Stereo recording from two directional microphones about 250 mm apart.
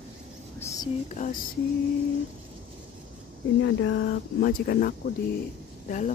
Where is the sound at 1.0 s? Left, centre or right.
Left.